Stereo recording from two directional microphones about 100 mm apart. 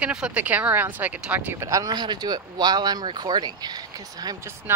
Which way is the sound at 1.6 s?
35° right (ahead or behind).